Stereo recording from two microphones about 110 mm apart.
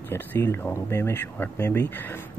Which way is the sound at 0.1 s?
20° left (ahead or behind).